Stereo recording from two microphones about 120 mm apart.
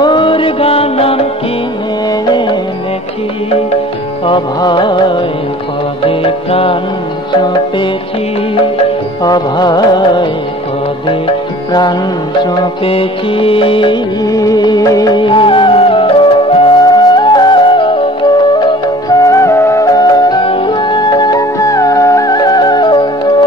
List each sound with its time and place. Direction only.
0.0 s music: 45° left (ahead or behind)
4.3 s music: 40° left (ahead or behind)
9.2 s music: 35° left (ahead or behind)
12.4 s music: 45° left (ahead or behind)
14.2 s music: 30° left (ahead or behind); by 16.7 s 45° left (ahead or behind)
16.8 s music: 35° left (ahead or behind)
19.0 s music: 25° left (ahead or behind)
20.4 s music: 45° left (ahead or behind)